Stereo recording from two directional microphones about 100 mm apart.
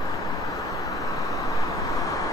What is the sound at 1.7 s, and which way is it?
Vehicle, 30° left (ahead or behind).